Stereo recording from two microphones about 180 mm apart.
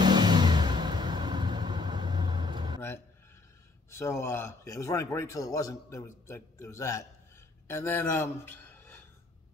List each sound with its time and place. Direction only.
0.0 s vehicle: 25° right (ahead or behind)
4.0 s a man's voice: 15° left (ahead or behind)